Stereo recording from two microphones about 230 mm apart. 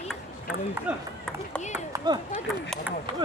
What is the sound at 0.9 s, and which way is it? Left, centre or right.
Speech, centre.